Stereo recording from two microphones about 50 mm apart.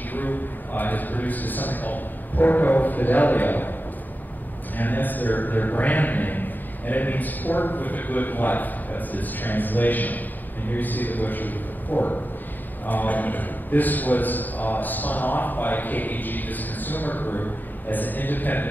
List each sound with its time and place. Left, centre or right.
0.1 s a man's voice: left
4.7 s a man's voice: left